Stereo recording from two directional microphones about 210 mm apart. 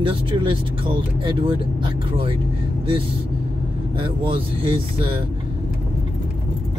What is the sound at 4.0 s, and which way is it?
Speech, 25° right (ahead or behind).